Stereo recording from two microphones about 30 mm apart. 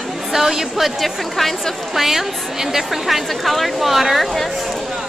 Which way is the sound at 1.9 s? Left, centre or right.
Centre.